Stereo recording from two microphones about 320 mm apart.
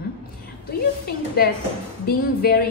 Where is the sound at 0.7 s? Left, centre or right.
Left.